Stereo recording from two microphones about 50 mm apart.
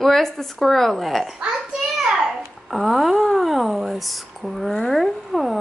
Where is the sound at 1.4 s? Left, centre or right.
Centre.